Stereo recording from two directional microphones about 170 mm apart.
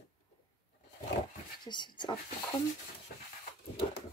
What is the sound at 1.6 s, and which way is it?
Speech, 25° left (ahead or behind).